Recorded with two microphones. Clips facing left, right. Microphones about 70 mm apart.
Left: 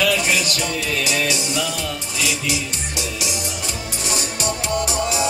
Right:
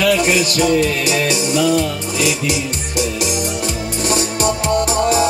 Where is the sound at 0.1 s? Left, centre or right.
Right.